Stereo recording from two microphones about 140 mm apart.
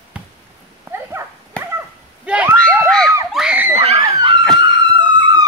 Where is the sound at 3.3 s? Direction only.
5° right (ahead or behind).